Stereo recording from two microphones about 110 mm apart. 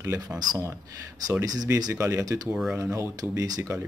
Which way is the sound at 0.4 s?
35° right (ahead or behind).